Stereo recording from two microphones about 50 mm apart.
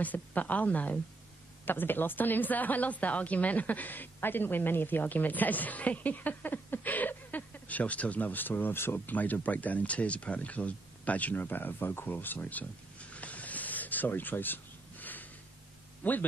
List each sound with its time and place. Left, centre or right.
0.0 s a woman's voice: left
1.7 s a woman's voice: left